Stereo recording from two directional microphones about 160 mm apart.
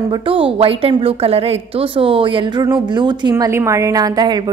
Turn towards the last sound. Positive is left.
turn(degrees=-25)  # may be behind; listen again after turning